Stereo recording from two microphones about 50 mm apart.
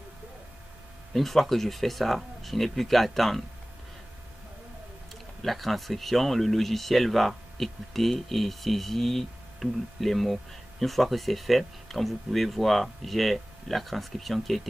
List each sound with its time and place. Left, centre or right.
1.1 s speech: centre
5.4 s speech: centre